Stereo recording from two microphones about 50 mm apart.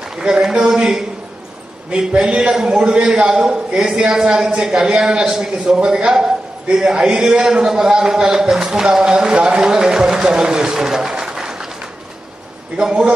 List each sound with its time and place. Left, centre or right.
0.2 s a man's voice: centre
12.7 s a man's voice: centre